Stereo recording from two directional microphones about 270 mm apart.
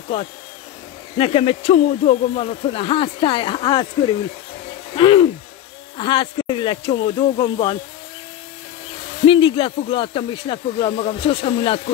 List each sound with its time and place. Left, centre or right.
1.1 s speech: left
4.9 s speech: centre
9.2 s speech: centre